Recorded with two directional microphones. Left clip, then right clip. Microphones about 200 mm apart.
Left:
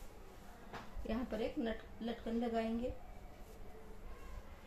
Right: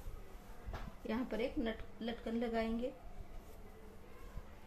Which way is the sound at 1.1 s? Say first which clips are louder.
Right 1 dB; 30° right (ahead or behind).